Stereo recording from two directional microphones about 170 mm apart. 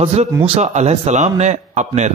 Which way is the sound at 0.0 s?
40° right (ahead or behind).